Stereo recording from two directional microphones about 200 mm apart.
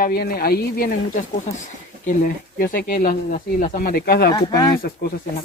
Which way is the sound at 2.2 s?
45° left (ahead or behind).